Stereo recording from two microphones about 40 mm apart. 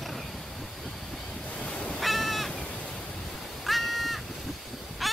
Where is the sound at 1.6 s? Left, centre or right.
Left.